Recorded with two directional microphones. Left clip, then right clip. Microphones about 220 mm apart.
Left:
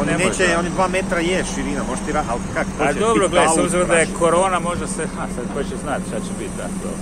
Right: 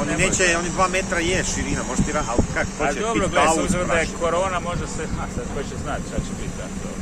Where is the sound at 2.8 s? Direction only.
45° left (ahead or behind).